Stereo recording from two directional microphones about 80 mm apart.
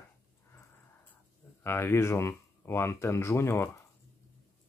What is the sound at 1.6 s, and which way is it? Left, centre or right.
Speech, left.